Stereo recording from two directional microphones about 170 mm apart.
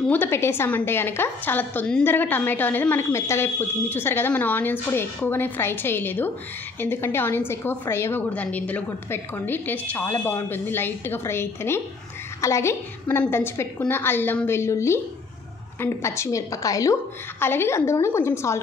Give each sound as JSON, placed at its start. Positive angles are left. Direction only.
{"t": 0.1, "sound": "a woman's voice", "side_deg": 15}